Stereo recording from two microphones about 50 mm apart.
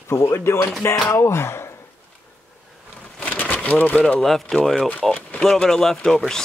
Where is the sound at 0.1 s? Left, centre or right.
Left.